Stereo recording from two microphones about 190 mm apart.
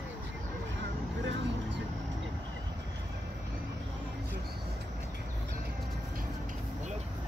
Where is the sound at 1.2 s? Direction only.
75° right (ahead or behind).